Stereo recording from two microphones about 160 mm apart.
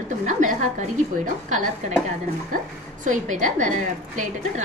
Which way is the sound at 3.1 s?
50° right (ahead or behind).